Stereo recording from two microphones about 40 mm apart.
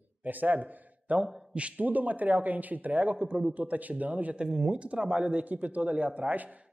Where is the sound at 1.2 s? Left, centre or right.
Right.